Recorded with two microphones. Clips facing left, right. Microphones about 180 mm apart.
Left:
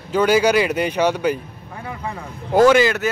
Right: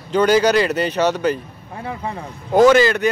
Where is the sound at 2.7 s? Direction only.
10° left (ahead or behind).